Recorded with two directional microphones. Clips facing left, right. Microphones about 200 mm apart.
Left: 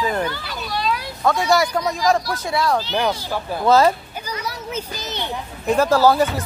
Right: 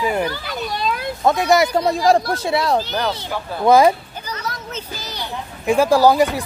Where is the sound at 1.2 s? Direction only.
20° right (ahead or behind).